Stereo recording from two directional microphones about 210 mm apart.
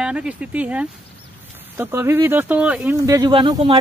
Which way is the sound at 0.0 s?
5° right (ahead or behind).